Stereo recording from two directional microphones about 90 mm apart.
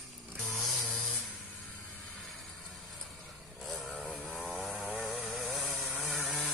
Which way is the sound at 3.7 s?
Centre (ahead or behind).